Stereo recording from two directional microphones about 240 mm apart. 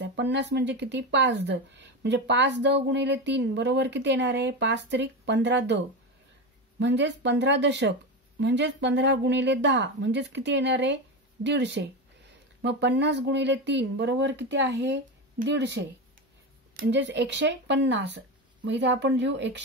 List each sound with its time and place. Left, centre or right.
0.0 s speech: right
6.8 s speech: right